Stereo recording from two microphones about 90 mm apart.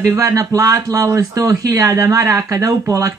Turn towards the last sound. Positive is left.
turn(degrees=-35)  # may be behind; listen again after turning